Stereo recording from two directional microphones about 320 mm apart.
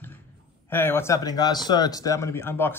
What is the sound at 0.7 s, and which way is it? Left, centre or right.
Speech, centre.